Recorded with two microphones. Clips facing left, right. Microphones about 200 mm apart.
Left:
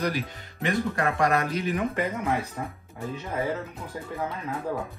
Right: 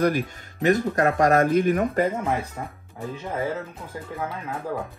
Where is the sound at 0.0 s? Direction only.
45° right (ahead or behind).